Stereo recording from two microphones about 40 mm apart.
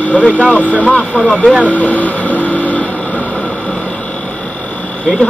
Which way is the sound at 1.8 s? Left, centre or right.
Left.